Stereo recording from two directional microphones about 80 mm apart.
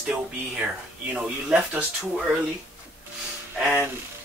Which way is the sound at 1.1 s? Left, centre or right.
Centre.